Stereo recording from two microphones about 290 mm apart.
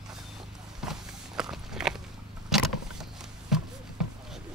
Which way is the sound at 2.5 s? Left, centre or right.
Centre.